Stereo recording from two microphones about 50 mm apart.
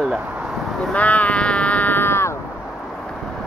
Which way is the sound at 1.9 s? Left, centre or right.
Left.